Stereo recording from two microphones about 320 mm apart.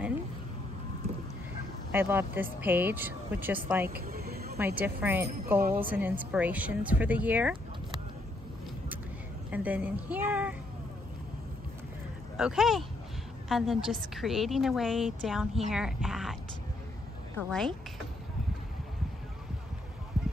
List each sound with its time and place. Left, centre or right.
1.9 s speech: centre
3.9 s vehicle: right
4.7 s a woman's voice: centre
9.5 s a woman's voice: centre
12.4 s a woman's voice: centre
17.5 s a woman's voice: centre